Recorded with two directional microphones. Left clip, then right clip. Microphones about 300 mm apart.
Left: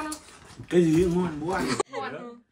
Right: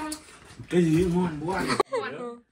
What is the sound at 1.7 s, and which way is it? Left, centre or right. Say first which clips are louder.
Speech: right 3 dB; centre.